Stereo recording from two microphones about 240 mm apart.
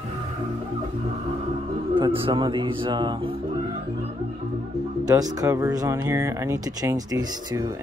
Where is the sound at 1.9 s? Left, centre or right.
Right.